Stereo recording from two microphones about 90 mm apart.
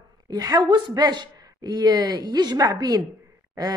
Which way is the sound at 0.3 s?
45° right (ahead or behind).